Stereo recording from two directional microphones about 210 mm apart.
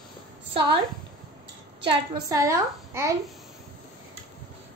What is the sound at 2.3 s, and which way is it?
Speech, 15° right (ahead or behind).